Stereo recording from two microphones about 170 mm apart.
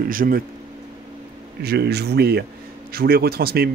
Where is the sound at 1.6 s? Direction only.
70° right (ahead or behind).